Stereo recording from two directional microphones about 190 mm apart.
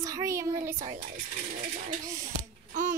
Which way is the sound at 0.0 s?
15° right (ahead or behind).